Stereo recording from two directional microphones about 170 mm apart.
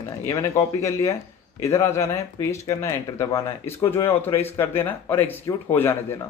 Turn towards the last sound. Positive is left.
turn(degrees=15)  # may be behind; listen again after turning